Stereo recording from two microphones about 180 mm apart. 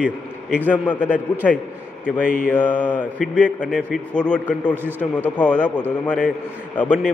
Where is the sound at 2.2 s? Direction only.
50° left (ahead or behind).